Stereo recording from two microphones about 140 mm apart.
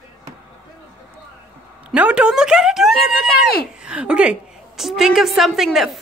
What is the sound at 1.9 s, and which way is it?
A woman's voice, 10° right (ahead or behind).